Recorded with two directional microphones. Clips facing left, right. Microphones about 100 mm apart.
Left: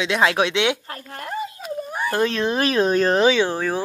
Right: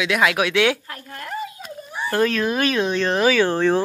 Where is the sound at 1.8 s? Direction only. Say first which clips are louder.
Left 1 dB; 50° left (ahead or behind).